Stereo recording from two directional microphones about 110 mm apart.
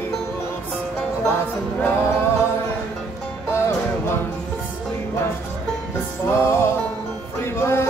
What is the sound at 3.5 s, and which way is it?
Music, 25° left (ahead or behind).